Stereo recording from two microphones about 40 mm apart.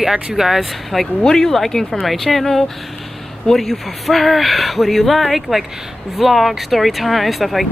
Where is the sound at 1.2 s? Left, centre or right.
Centre.